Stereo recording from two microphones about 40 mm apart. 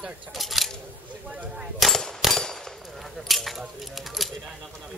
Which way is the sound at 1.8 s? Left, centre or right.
Centre.